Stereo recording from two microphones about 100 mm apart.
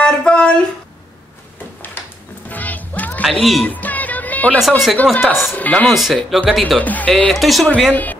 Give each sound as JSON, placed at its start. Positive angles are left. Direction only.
{"t": 0.0, "sound": "a sound", "side_deg": 10}
{"t": 2.5, "sound": "music", "side_deg": 15}
{"t": 3.3, "sound": "speech", "side_deg": 0}
{"t": 3.6, "sound": "music", "side_deg": 15}
{"t": 4.6, "sound": "speech", "side_deg": 0}
{"t": 5.5, "sound": "speech", "side_deg": 15}
{"t": 5.9, "sound": "speech", "side_deg": 0}
{"t": 6.8, "sound": "speech", "side_deg": 15}
{"t": 7.1, "sound": "speech", "side_deg": 5}
{"t": 7.9, "sound": "speech", "side_deg": 15}